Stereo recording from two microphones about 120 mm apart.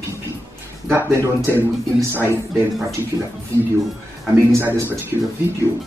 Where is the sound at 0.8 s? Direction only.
20° right (ahead or behind).